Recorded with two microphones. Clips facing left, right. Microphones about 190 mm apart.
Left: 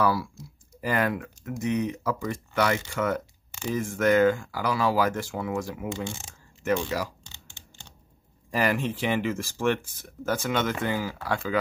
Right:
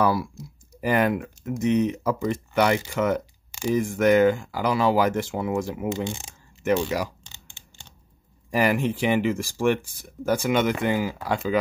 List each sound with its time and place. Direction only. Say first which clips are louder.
0.0 s speech: right 2 dB; 20° right (ahead or behind)
8.5 s speech: right 4 dB; 15° right (ahead or behind)